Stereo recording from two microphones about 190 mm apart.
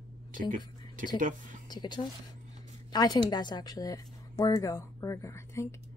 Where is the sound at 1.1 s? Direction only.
45° right (ahead or behind).